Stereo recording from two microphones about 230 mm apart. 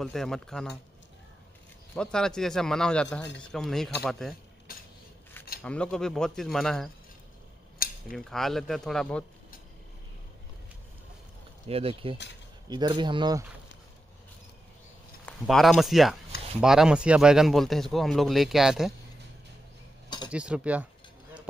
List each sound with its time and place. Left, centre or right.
0.0 s speech: centre
2.0 s speech: centre
5.6 s speech: centre
8.1 s speech: centre
11.6 s a man's voice: right
15.2 s speech: centre
20.2 s speech: centre